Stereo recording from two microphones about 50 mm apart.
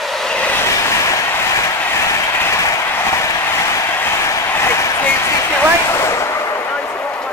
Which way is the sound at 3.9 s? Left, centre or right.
Left.